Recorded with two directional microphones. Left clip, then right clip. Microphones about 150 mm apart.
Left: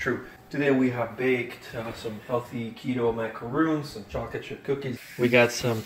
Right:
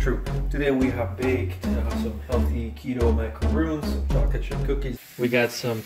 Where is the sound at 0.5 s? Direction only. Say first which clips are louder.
Even; centre (ahead or behind).